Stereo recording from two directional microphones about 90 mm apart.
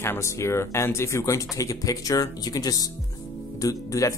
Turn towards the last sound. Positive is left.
turn(degrees=35)  # may be behind; listen again after turning